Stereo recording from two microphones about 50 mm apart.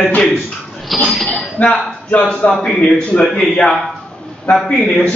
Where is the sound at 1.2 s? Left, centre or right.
Left.